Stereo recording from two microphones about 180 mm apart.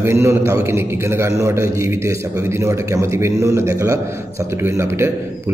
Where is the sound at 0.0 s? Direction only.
15° right (ahead or behind).